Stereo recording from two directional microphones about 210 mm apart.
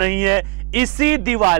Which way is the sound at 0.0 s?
15° right (ahead or behind).